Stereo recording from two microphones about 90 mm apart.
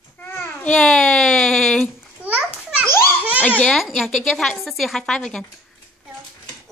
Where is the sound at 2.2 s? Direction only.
15° right (ahead or behind).